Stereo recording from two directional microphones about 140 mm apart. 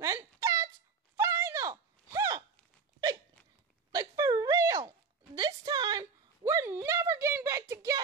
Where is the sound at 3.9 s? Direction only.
25° right (ahead or behind).